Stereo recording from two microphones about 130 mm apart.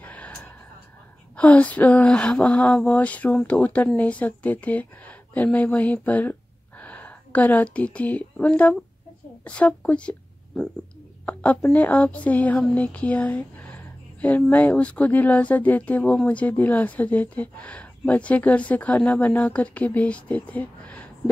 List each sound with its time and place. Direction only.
0.0 s a sound: 10° left (ahead or behind)
1.3 s a woman's voice: 10° left (ahead or behind)
11.7 s speech: 10° left (ahead or behind)